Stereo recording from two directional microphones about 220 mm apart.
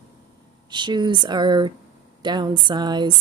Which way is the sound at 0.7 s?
20° right (ahead or behind).